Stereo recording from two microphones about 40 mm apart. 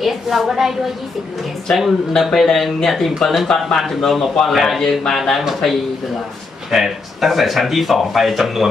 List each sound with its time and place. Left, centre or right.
0.0 s a woman's voice: centre
2.3 s speech: centre